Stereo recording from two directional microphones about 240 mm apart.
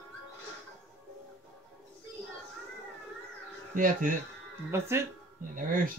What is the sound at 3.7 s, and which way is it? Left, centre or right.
Speech, right.